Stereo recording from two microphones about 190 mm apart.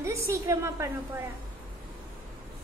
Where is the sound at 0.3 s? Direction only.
15° right (ahead or behind).